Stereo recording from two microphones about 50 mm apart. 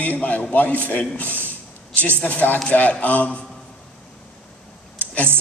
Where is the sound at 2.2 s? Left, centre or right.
Left.